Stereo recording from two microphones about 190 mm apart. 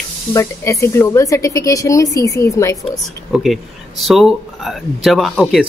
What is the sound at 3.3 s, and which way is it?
Speech, centre (ahead or behind).